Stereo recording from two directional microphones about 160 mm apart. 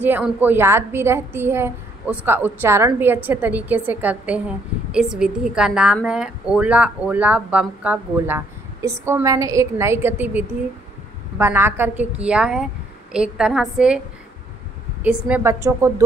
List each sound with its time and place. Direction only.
0.0 s a woman's voice: 10° right (ahead or behind)
15.0 s a woman's voice: 10° right (ahead or behind)